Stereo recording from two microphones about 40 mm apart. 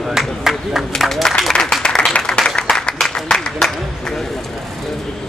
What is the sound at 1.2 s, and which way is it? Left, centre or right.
Applause, centre.